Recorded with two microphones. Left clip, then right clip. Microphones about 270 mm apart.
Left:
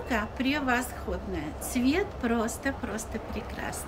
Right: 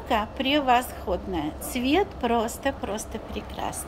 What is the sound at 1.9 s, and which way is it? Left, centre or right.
Speech, centre.